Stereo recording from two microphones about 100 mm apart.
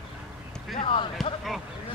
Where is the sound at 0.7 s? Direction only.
60° left (ahead or behind).